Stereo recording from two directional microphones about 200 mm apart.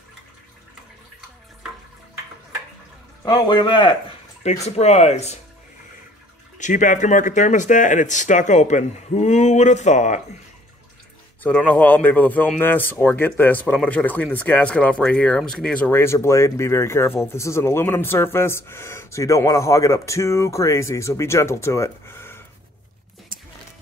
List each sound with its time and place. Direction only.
3.3 s a man's voice: 20° left (ahead or behind)
6.6 s speech: 40° left (ahead or behind)
11.4 s speech: 10° left (ahead or behind)